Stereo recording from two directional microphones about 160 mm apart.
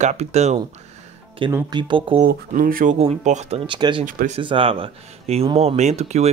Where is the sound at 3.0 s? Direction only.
45° right (ahead or behind).